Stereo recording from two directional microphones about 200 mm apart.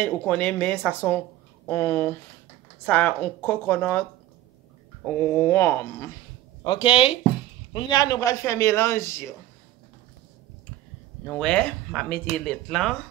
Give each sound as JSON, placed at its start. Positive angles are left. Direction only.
{"t": 0.0, "sound": "speech", "side_deg": 5}
{"t": 5.2, "sound": "speech", "side_deg": 10}
{"t": 6.6, "sound": "speech", "side_deg": 25}
{"t": 11.2, "sound": "speech", "side_deg": 5}